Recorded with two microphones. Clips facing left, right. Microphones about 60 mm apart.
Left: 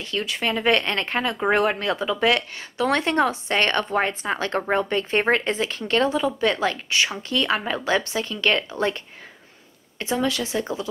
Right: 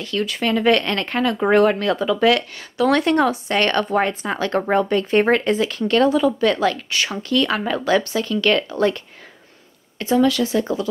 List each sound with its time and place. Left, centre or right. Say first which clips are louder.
0.0 s speech: right 4 dB; left